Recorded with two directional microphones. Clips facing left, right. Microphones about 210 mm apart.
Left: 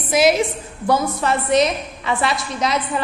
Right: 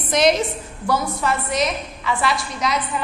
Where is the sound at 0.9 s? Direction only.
20° left (ahead or behind).